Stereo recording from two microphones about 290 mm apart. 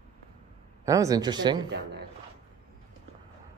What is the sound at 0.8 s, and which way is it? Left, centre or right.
Speech, centre.